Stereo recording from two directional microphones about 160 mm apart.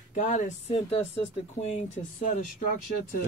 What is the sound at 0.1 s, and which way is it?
Speech, 50° left (ahead or behind).